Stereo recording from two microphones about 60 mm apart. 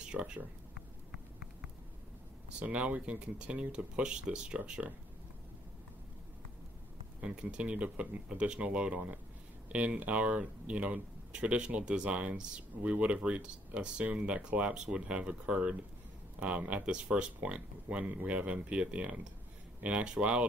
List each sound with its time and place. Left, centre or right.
0.0 s speech: centre
2.6 s speech: right
7.2 s speech: centre